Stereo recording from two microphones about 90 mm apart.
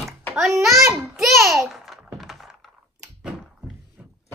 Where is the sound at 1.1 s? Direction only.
Centre (ahead or behind).